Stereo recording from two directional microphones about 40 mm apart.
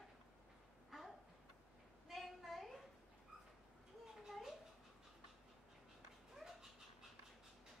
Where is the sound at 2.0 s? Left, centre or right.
Centre.